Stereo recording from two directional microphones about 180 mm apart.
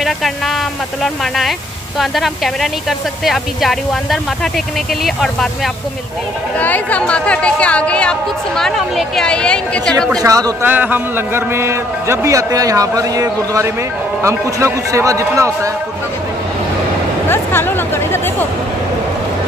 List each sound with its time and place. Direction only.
1.0 s speech: centre (ahead or behind)
6.6 s speech: 10° left (ahead or behind)
10.1 s a man's voice: 20° right (ahead or behind)
17.3 s speech: 10° left (ahead or behind)